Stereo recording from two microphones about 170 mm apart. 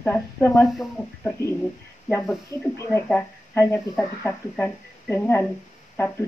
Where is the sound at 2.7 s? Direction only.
15° left (ahead or behind).